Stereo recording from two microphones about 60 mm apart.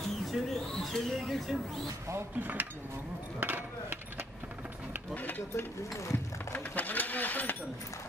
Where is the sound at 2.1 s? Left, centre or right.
Right.